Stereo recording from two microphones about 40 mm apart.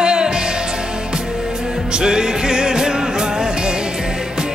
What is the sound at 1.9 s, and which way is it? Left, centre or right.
Music, centre.